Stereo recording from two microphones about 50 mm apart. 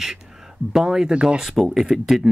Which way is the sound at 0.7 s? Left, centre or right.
Centre.